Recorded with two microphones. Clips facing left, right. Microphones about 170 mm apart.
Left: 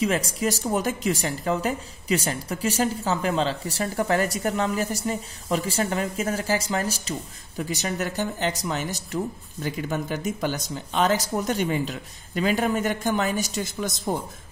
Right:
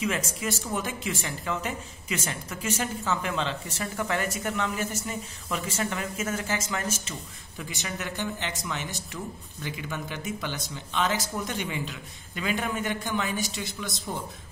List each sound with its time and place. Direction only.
0.0 s speech: 35° left (ahead or behind)